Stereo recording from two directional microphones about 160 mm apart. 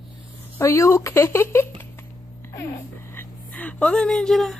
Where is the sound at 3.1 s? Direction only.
10° left (ahead or behind).